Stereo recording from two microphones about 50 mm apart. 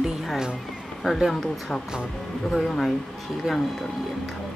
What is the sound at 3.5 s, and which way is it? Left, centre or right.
Speech, centre.